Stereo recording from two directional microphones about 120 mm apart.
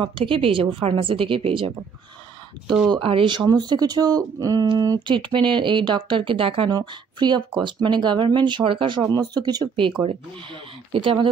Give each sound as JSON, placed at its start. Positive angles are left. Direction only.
{"t": 0.0, "sound": "a woman's voice", "side_deg": -45}
{"t": 2.9, "sound": "a woman's voice", "side_deg": -50}